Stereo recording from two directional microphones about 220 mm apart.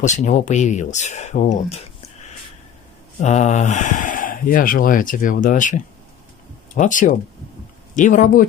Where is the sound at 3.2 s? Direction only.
30° left (ahead or behind).